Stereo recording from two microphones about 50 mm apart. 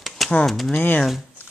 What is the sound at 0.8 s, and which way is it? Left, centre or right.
Speech, left.